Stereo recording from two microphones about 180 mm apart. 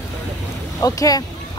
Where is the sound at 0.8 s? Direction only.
20° left (ahead or behind).